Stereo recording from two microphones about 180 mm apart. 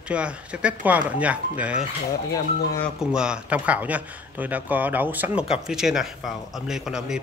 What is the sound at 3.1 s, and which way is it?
Speech, 5° right (ahead or behind).